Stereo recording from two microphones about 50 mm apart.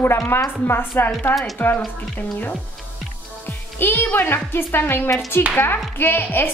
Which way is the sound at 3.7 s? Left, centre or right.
Left.